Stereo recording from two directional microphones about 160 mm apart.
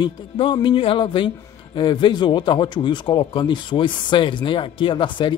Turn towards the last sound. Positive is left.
turn(degrees=30)  # may be behind; listen again after turning